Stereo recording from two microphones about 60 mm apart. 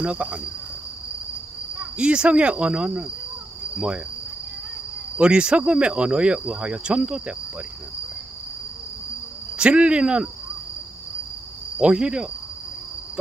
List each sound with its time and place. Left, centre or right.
0.0 s cricket: right
2.0 s speech: centre
5.1 s speech: centre
9.6 s speech: centre
11.8 s speech: centre